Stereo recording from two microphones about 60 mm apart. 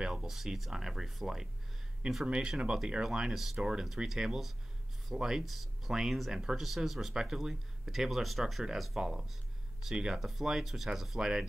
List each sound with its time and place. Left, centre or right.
0.0 s speech: centre